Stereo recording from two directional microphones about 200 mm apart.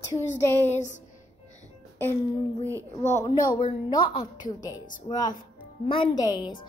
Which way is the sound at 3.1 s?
20° left (ahead or behind).